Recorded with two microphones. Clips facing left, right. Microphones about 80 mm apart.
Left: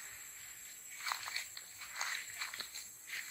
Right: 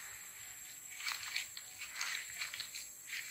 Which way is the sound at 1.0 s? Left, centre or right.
Left.